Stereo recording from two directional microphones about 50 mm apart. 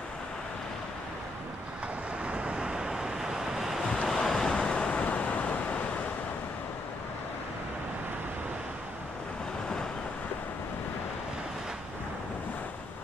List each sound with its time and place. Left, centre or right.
2.2 s waves: right; by 3.8 s centre
4.1 s waves: centre; by 5.6 s left